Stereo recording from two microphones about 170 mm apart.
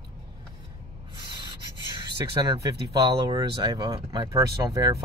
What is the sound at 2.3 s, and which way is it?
Speech, 20° right (ahead or behind).